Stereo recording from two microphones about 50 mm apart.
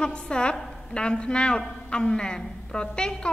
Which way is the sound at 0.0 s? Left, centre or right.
Centre.